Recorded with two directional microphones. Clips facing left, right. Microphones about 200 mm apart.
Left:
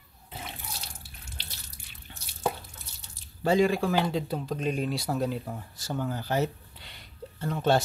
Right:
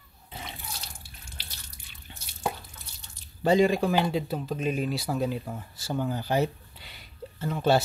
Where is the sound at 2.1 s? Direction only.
20° right (ahead or behind).